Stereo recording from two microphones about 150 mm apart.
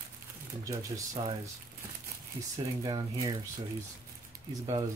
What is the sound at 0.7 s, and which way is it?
Speech, 20° right (ahead or behind).